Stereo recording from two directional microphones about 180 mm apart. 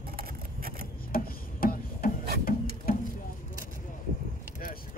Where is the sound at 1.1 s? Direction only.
55° left (ahead or behind).